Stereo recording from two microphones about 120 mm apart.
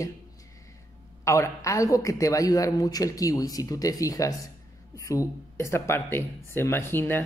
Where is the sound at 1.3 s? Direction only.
25° left (ahead or behind).